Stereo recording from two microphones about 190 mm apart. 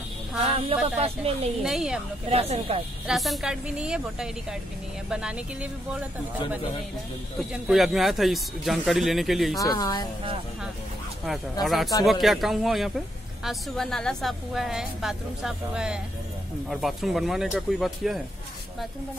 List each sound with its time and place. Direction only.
0.4 s speech: 30° right (ahead or behind)
1.6 s a woman's voice: 5° right (ahead or behind)
2.2 s speech: 30° right (ahead or behind)
3.1 s a woman's voice: centre (ahead or behind)
7.3 s a woman's voice: centre (ahead or behind)
9.6 s speech: 20° left (ahead or behind)
11.6 s a woman's voice: centre (ahead or behind)